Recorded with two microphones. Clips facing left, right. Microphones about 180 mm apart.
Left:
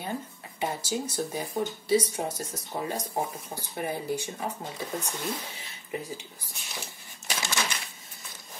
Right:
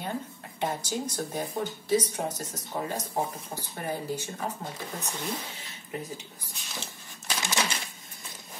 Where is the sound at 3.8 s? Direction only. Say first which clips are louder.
Left 2 dB; 10° left (ahead or behind).